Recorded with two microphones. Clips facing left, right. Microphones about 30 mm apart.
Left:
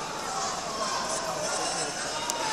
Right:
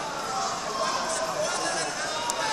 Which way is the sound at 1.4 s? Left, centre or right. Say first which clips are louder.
Right 2 dB; right.